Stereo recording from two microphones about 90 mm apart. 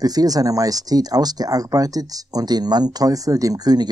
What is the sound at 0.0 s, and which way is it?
Speech, 45° right (ahead or behind).